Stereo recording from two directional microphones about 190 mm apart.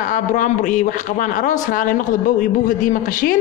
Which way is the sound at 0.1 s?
40° left (ahead or behind).